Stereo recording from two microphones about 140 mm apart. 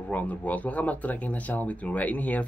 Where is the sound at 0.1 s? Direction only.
10° left (ahead or behind).